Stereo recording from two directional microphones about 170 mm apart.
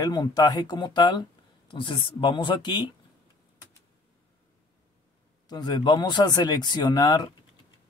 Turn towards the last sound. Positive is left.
turn(degrees=25)  # may be behind; listen again after turning